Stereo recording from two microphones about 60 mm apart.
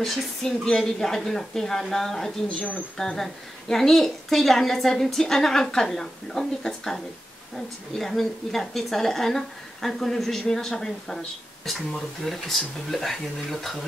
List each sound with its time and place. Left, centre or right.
0.0 s a woman's voice: centre
2.4 s a woman's voice: centre